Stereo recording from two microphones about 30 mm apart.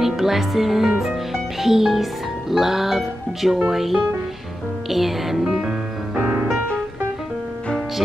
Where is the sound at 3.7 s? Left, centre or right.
Centre.